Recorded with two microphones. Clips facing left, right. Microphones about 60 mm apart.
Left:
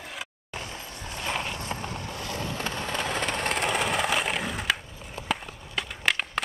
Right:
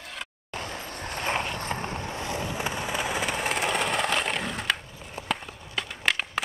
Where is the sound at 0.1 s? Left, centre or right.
Centre.